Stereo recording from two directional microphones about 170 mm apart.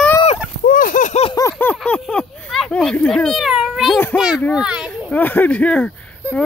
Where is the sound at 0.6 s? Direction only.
55° left (ahead or behind).